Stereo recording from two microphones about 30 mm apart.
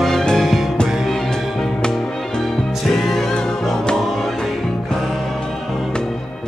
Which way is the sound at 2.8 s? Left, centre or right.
Centre.